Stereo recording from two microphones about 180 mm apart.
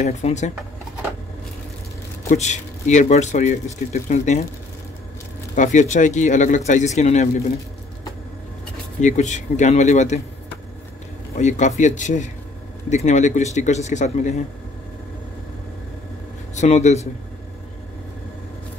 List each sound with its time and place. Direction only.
0.0 s speech: 40° left (ahead or behind)
2.2 s speech: 40° left (ahead or behind)
5.6 s speech: 45° left (ahead or behind)
9.0 s speech: 40° left (ahead or behind)
11.3 s speech: 40° left (ahead or behind)
16.5 s speech: 40° left (ahead or behind)